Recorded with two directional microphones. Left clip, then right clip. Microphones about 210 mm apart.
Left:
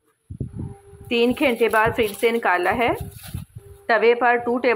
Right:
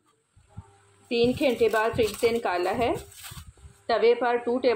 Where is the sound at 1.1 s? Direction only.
15° left (ahead or behind).